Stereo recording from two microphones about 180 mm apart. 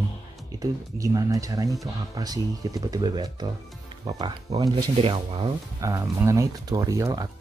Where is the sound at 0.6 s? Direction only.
20° right (ahead or behind).